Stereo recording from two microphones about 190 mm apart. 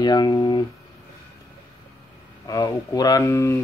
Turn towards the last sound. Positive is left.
turn(degrees=15)  # may be behind; listen again after turning